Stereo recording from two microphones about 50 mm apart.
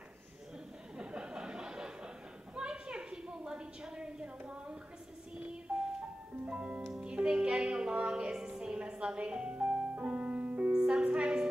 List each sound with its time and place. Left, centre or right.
0.9 s a sound: centre
5.4 s music: right
10.9 s music: right